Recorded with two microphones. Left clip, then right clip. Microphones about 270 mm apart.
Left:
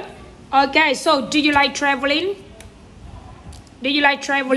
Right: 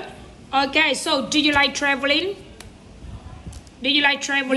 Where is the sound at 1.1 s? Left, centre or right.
Centre.